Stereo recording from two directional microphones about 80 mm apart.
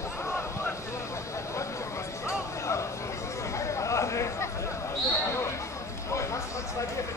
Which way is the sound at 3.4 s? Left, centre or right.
Left.